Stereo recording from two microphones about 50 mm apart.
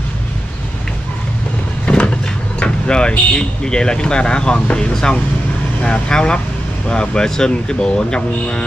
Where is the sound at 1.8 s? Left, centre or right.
Left.